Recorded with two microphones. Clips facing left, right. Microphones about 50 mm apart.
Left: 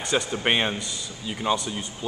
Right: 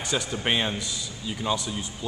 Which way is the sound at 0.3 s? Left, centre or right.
Centre.